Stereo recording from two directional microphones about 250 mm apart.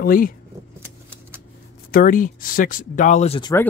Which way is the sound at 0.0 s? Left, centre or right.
Left.